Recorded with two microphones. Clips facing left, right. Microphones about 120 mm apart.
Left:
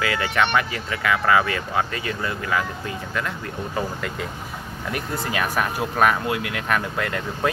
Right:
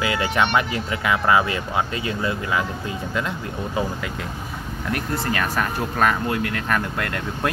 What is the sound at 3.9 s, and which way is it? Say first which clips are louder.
Speech: even; centre (ahead or behind).